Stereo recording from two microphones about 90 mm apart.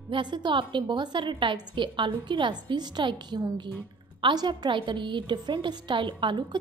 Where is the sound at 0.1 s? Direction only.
60° right (ahead or behind).